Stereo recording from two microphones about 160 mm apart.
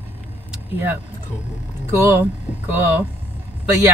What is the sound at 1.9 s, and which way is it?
Speech, 15° right (ahead or behind).